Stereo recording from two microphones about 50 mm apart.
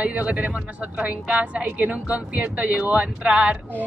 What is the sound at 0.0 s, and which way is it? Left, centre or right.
A woman's voice, right.